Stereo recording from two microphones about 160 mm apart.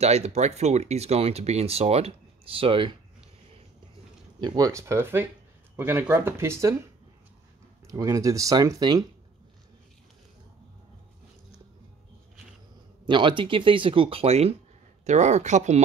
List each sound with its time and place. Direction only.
0.0 s speech: 45° right (ahead or behind)
4.4 s speech: 25° right (ahead or behind)
7.8 s speech: 20° right (ahead or behind)
13.0 s speech: 30° right (ahead or behind); by 15.8 s 45° right (ahead or behind)